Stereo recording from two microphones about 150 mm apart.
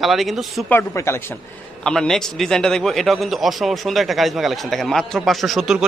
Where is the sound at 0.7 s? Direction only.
15° left (ahead or behind).